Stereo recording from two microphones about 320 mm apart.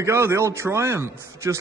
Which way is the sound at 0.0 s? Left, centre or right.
Centre.